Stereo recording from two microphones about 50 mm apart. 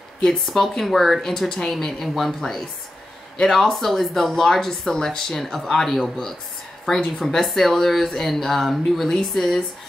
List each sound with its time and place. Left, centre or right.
0.2 s a woman's voice: centre